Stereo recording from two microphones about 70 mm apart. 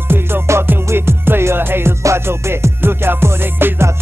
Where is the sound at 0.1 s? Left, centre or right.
Right.